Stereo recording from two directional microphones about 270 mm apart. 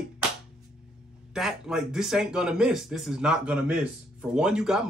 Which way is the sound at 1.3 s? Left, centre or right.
Centre.